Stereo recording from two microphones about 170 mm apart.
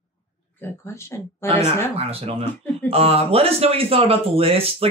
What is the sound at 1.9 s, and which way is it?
Speech, 35° right (ahead or behind).